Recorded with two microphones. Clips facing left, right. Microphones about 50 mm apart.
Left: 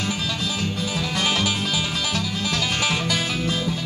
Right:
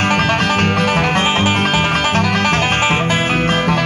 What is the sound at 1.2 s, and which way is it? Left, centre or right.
Music, right.